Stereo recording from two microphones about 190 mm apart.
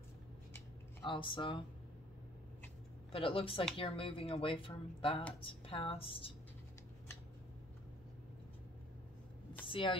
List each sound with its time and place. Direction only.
1.0 s speech: 25° left (ahead or behind)
3.1 s speech: 30° left (ahead or behind)
9.7 s speech: 25° left (ahead or behind)